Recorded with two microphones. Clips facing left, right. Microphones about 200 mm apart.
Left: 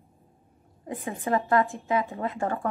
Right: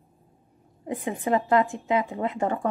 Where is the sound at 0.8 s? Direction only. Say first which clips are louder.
Right 3 dB; 15° right (ahead or behind).